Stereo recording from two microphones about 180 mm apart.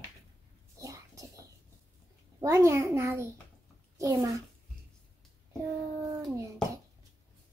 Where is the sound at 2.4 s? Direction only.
15° right (ahead or behind).